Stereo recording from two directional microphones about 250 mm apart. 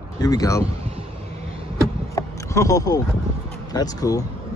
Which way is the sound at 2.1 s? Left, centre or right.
Centre.